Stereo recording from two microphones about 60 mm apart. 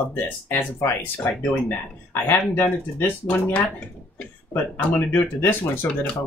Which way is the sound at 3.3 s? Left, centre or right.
Left.